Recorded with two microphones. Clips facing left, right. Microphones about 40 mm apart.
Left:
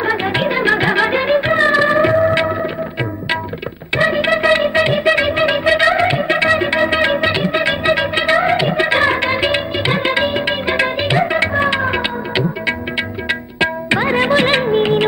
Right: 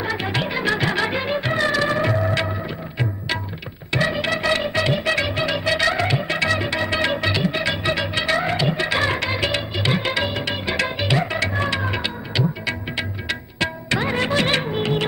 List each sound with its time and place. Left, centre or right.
0.0 s music: left
3.9 s music: left